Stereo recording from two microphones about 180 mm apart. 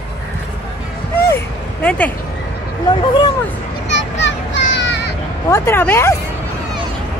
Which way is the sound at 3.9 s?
85° left.